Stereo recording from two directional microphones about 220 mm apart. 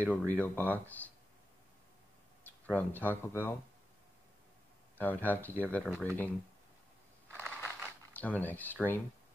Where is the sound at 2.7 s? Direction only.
10° left (ahead or behind).